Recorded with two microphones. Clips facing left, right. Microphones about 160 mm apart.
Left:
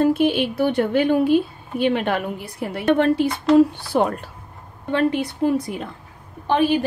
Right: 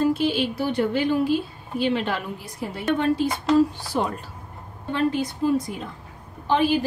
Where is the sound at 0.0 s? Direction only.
60° left (ahead or behind).